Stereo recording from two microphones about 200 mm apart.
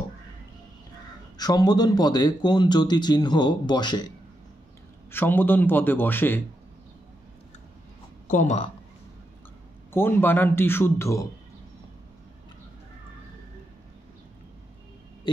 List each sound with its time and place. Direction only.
1.4 s speech: 20° left (ahead or behind)
5.1 s a man's voice: 10° left (ahead or behind)
8.3 s speech: 35° left (ahead or behind)
9.9 s a man's voice: 10° left (ahead or behind)